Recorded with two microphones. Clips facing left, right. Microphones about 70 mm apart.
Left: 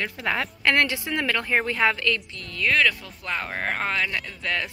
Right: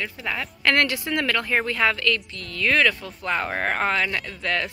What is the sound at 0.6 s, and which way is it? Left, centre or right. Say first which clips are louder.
Speech: right 1 dB; centre.